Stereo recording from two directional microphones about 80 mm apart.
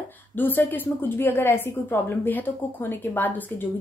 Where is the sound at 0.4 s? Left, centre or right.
Left.